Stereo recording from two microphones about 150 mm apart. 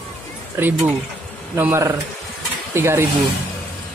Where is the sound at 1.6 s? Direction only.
15° right (ahead or behind).